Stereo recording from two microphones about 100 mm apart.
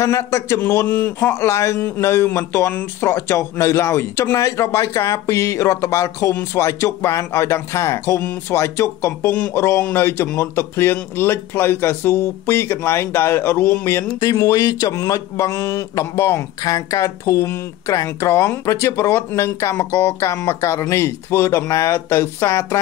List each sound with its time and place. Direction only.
0.0 s speech: 30° left (ahead or behind)